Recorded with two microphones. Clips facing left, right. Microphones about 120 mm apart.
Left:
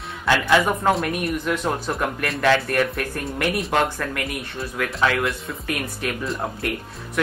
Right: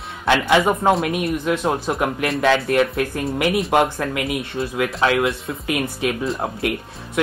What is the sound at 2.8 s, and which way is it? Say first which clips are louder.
Speech: right 4 dB; 15° right (ahead or behind).